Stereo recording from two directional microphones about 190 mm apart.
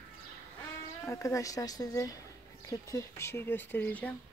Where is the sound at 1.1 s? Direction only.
15° left (ahead or behind).